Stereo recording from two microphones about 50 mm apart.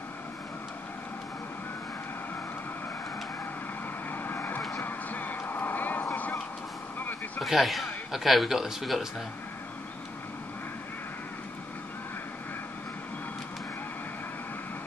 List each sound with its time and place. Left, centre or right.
4.1 s vehicle: left
4.8 s a sound: left
5.5 s vehicle: left
7.4 s speech: centre